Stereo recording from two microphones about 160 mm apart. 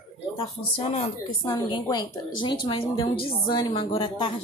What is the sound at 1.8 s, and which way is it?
A woman's voice, 30° left (ahead or behind).